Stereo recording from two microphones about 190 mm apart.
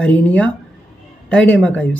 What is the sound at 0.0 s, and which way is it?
Speech, 5° left (ahead or behind).